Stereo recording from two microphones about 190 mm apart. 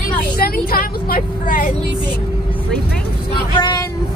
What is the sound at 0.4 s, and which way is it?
Vehicle, 50° left (ahead or behind).